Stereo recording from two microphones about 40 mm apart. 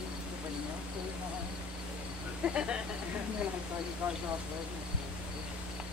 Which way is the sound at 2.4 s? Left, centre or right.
Right.